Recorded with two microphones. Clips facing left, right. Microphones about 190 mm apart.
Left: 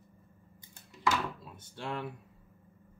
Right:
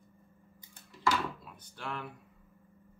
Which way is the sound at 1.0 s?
25° left (ahead or behind).